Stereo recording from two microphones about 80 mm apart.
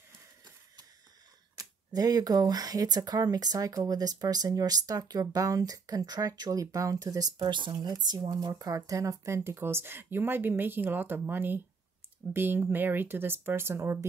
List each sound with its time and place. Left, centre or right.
1.6 s speech: right
6.6 s speech: right
7.8 s speech: right